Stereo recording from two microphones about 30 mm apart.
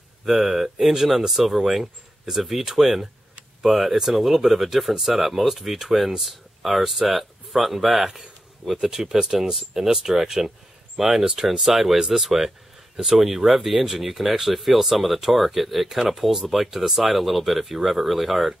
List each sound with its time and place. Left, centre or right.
0.2 s speech: centre
8.1 s a sound: centre
8.8 s speech: centre